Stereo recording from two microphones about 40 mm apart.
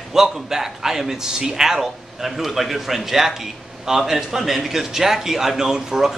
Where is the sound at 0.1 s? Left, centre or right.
Centre.